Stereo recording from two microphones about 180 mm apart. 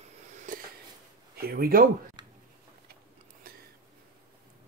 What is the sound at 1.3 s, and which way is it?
Speech, 60° right (ahead or behind).